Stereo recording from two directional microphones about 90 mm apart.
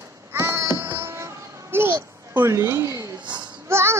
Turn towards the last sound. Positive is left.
turn(degrees=-30)  # may be behind; listen again after turning